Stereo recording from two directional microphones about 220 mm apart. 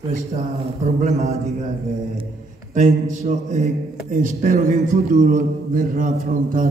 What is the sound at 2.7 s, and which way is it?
A man's voice, 35° right (ahead or behind).